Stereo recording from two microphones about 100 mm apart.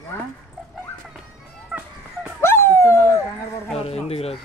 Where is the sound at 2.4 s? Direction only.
25° left (ahead or behind).